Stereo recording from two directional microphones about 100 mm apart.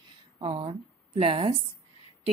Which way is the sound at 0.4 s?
75° right (ahead or behind).